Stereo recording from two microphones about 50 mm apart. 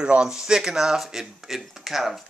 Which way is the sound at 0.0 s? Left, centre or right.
Centre.